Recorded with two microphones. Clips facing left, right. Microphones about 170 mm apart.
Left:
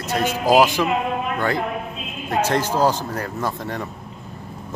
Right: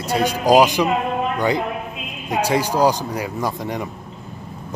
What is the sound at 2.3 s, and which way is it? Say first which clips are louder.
A man's voice: right 1 dB; 15° right (ahead or behind).